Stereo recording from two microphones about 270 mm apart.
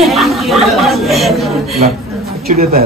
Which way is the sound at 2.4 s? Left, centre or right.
Right.